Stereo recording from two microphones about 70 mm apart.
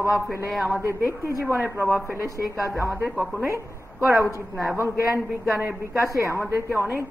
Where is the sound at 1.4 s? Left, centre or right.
Right.